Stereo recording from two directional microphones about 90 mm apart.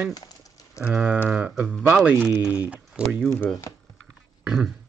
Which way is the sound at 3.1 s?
5° left (ahead or behind).